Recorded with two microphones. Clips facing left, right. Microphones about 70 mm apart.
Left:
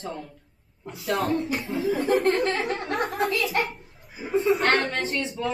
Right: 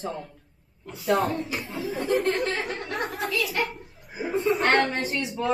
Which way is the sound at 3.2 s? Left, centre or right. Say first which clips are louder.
Left 3 dB; left.